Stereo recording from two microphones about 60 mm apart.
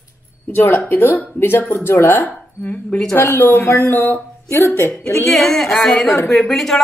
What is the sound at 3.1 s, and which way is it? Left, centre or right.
Speech, left.